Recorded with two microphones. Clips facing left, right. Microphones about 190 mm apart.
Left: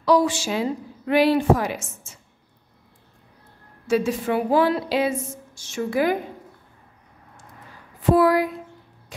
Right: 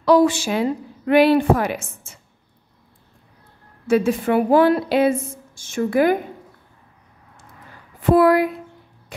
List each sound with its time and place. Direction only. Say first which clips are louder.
0.0 s a woman's voice: right 4 dB; 55° right (ahead or behind)
3.8 s a woman's voice: right 4 dB; 55° right (ahead or behind)
8.0 s a woman's voice: right 3 dB; 60° right (ahead or behind)